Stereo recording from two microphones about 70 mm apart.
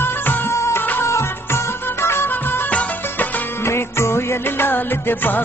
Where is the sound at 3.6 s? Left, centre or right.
Left.